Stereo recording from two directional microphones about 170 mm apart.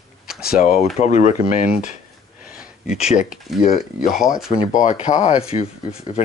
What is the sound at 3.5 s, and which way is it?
Speech, centre (ahead or behind).